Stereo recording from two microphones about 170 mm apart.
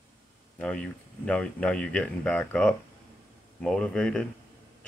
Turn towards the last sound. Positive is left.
turn(degrees=5)  # may be behind; listen again after turning